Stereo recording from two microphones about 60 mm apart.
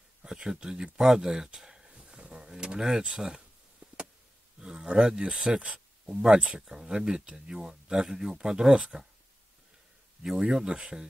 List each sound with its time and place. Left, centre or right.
0.2 s speech: centre
4.6 s a sound: centre
5.3 s speech: centre
10.2 s speech: centre